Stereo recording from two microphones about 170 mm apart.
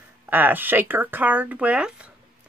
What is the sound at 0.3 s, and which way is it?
Speech, 10° right (ahead or behind).